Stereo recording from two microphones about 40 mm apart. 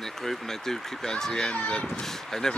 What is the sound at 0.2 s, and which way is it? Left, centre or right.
Speech, centre.